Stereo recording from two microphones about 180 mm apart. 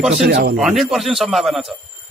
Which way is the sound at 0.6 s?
Centre (ahead or behind).